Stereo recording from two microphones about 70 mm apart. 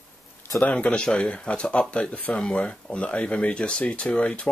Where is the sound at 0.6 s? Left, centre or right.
Left.